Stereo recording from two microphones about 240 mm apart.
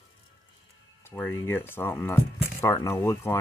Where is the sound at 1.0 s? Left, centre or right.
Centre.